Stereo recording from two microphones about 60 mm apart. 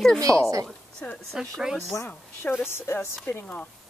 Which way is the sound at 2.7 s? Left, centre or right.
Left.